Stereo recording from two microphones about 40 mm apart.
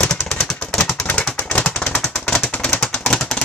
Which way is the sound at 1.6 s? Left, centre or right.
Left.